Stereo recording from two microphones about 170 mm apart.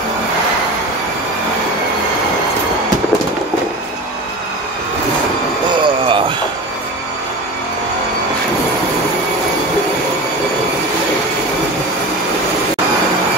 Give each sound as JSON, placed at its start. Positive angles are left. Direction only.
{"t": 5.7, "sound": "vehicle", "side_deg": -30}